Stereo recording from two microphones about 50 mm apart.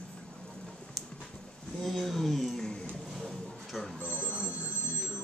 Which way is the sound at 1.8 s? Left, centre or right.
Centre.